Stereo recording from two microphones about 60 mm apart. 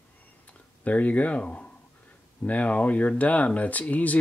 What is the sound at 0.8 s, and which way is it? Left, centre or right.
Speech, left.